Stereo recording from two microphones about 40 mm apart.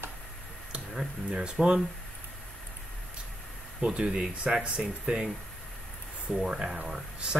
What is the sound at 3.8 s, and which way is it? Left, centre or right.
Speech, right.